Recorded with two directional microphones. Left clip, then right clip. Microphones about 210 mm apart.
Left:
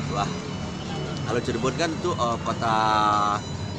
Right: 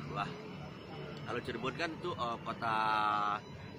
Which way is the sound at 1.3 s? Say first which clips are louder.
Left 12 dB; 5° left (ahead or behind).